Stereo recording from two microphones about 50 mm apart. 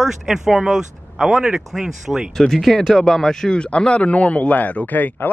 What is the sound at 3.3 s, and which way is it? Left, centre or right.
Speech, centre.